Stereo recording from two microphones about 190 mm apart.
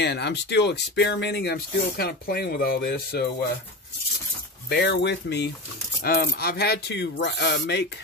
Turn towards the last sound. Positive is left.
turn(degrees=60)  # may be behind; listen again after turning